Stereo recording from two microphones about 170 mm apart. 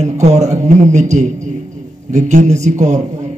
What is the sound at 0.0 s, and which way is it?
A man's voice, 40° right (ahead or behind).